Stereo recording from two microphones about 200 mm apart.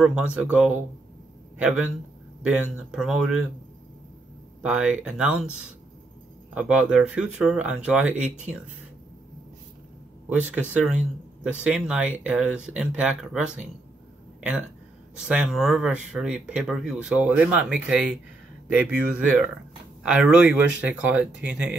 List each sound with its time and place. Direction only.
0.0 s speech: 5° right (ahead or behind)
4.6 s speech: 5° right (ahead or behind)
10.4 s speech: 5° right (ahead or behind)
15.1 s speech: 5° right (ahead or behind)